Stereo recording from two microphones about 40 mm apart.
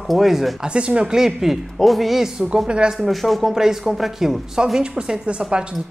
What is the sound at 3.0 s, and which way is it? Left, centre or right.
A woman's voice, centre.